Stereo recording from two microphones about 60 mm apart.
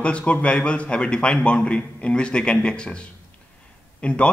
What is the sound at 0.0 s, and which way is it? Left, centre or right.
A man's voice, left.